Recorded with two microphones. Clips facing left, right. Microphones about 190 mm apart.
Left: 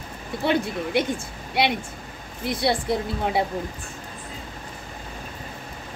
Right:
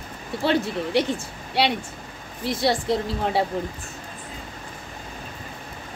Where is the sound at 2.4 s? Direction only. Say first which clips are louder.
Right 1 dB; 15° left (ahead or behind).